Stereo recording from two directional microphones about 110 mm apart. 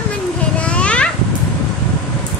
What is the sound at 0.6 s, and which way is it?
Babbling, 10° left (ahead or behind).